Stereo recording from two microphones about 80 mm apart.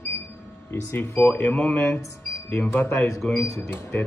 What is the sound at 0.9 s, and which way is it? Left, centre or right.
Speech, left.